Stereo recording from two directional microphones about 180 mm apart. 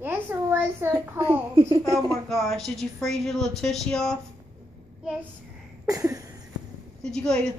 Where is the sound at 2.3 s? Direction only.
Centre (ahead or behind).